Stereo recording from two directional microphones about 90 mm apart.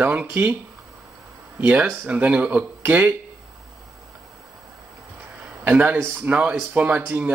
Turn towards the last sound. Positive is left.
turn(degrees=-15)  # may be behind; listen again after turning